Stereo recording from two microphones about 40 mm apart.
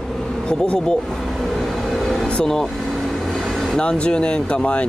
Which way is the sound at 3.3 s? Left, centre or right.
Centre.